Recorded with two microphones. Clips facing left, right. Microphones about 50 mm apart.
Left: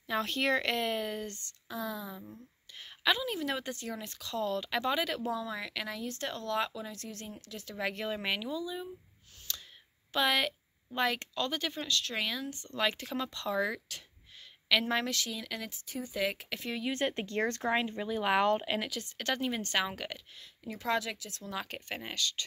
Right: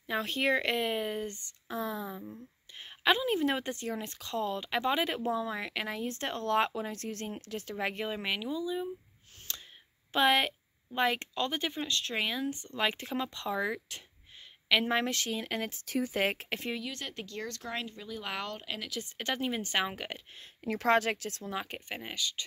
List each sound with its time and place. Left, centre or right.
0.0 s speech: centre
1.7 s a woman's voice: right
7.7 s speech: right
8.2 s speech: centre
9.5 s a sound: right
10.1 s a woman's voice: right
15.8 s speech: right
16.2 s a woman's voice: right
16.8 s speech: left
19.1 s speech: centre
20.6 s speech: right
21.5 s speech: centre